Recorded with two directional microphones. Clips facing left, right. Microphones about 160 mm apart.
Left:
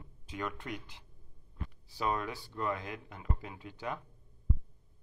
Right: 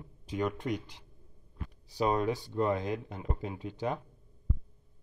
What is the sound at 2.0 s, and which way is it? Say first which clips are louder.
Speech: right 6 dB; 25° right (ahead or behind).